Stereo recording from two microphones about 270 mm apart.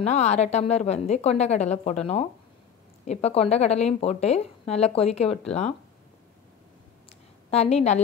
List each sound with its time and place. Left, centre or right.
0.0 s a woman's voice: left
7.5 s a woman's voice: left